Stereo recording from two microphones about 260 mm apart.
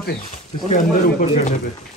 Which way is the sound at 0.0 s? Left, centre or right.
Left.